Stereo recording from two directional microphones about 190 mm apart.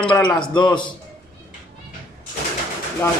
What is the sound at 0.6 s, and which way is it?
Speech, 25° left (ahead or behind).